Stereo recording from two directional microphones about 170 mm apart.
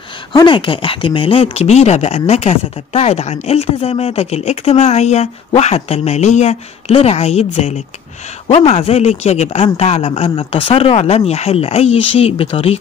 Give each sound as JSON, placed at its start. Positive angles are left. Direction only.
{"t": 0.3, "sound": "speech", "side_deg": 30}